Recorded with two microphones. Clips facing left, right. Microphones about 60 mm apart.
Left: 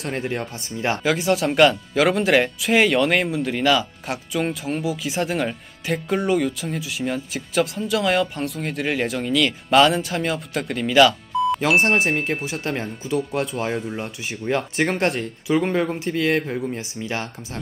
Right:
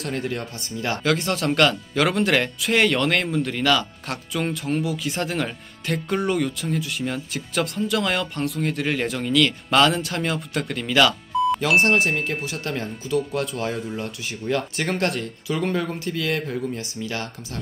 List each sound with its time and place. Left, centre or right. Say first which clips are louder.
0.1 s speech: left 2 dB; left
1.0 s speech: left 2 dB; centre
12.0 s speech: left 1 dB; left